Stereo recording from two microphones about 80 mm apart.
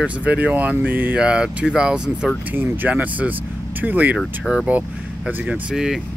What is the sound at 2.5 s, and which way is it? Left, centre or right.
Speech, right.